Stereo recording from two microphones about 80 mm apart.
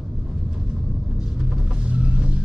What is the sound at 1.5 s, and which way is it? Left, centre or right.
Vehicle, centre.